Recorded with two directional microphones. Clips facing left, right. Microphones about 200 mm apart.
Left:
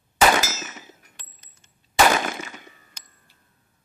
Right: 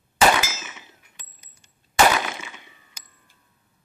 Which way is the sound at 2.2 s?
45° left (ahead or behind).